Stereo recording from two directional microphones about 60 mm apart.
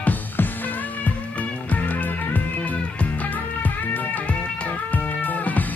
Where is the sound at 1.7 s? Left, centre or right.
Left.